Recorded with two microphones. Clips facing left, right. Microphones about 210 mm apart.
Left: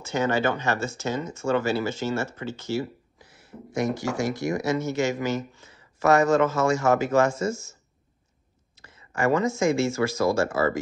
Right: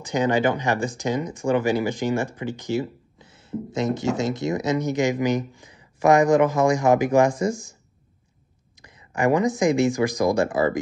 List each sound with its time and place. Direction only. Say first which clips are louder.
0.0 s speech: right 3 dB; 15° right (ahead or behind)
8.7 s speech: right 2 dB; 15° right (ahead or behind)